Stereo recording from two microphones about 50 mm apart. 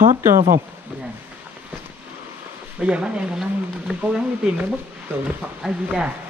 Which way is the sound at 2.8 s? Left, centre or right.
Right.